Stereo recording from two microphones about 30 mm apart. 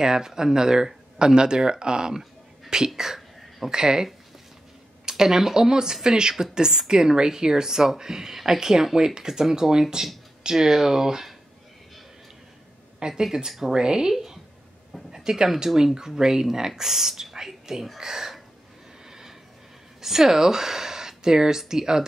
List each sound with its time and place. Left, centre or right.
0.0 s speech: centre
13.1 s speech: centre
13.7 s speech: right
15.0 s a sound: centre
15.6 s speech: centre
19.0 s a sound: centre
20.0 s speech: centre